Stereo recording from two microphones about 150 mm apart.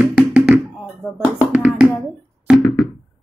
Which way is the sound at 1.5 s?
10° right (ahead or behind).